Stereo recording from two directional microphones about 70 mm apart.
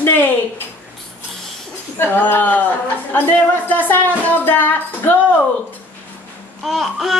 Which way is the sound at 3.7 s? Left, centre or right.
Left.